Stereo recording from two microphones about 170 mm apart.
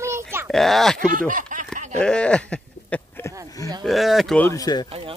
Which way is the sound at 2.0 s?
5° left (ahead or behind).